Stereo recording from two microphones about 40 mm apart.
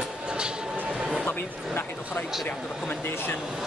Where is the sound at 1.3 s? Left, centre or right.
Left.